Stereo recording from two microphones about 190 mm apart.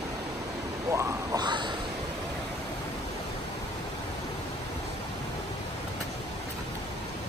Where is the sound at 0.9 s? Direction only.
15° right (ahead or behind).